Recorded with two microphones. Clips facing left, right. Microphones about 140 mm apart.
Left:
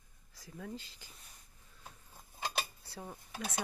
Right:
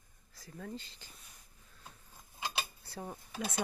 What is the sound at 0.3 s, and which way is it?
Speech, 10° left (ahead or behind).